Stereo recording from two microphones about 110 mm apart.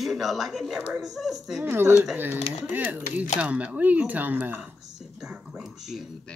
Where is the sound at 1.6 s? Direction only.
20° right (ahead or behind).